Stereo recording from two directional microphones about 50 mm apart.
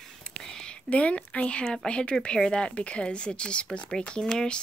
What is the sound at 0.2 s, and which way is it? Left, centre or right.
Whispering, centre.